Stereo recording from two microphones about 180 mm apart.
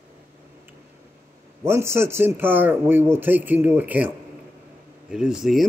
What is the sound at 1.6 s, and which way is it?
A man's voice, 15° right (ahead or behind).